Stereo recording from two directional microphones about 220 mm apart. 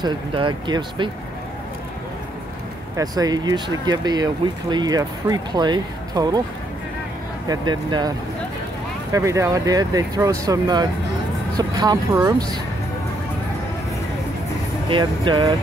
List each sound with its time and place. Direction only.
0.0 s speech: 20° right (ahead or behind)
3.0 s speech: 15° right (ahead or behind)
7.4 s speech: 20° right (ahead or behind)
9.1 s speech: 15° right (ahead or behind)
14.9 s speech: 20° right (ahead or behind)